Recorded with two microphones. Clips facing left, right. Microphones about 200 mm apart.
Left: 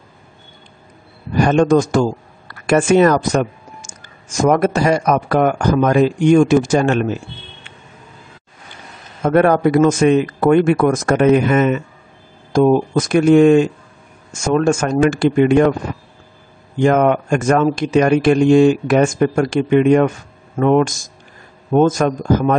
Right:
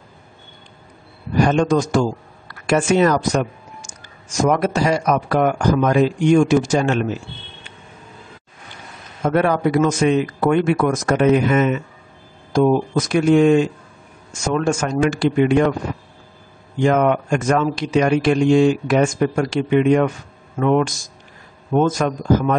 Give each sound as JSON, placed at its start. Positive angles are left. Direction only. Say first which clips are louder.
{"t": 1.4, "sound": "speech", "louder": "left 4 dB", "side_deg": 50}
{"t": 9.2, "sound": "speech", "louder": "left 4 dB", "side_deg": 50}
{"t": 16.8, "sound": "speech", "louder": "left 3 dB", "side_deg": 50}